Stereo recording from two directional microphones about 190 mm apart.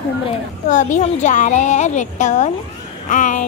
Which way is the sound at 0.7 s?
40° left (ahead or behind).